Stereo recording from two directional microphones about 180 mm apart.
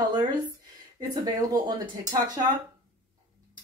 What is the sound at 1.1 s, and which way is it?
Speech, 25° right (ahead or behind).